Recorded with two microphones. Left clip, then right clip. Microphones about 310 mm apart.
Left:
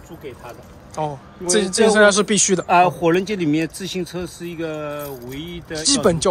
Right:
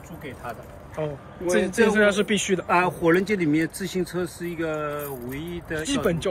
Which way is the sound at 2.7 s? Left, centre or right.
Left.